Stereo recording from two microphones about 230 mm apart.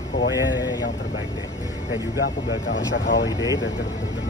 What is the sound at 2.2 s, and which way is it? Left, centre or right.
Speech, left.